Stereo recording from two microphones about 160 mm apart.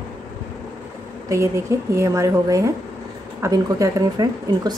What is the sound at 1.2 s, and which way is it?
A woman's voice, 20° right (ahead or behind).